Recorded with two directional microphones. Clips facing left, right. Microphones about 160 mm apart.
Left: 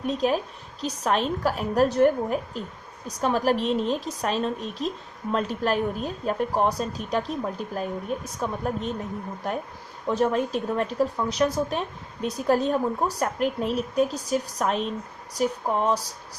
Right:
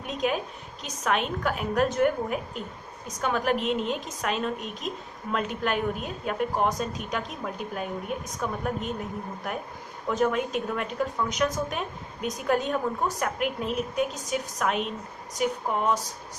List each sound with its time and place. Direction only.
0.0 s a woman's voice: 35° left (ahead or behind)
10.0 s a woman's voice: 35° left (ahead or behind)